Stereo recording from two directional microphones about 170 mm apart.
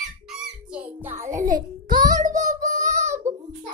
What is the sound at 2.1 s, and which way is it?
Child singing, 50° right (ahead or behind).